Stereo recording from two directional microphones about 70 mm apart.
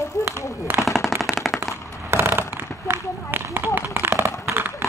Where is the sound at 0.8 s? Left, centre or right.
Centre.